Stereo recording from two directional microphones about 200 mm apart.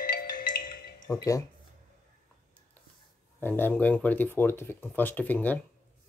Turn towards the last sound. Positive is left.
turn(degrees=10)  # may be behind; listen again after turning